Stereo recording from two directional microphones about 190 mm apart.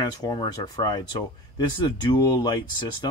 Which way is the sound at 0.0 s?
20° left (ahead or behind).